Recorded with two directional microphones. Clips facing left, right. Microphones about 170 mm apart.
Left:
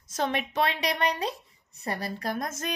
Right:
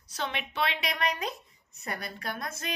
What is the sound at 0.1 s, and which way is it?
A woman's voice, 45° left (ahead or behind).